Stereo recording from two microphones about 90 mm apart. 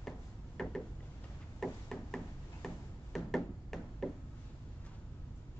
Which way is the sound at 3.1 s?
5° left (ahead or behind).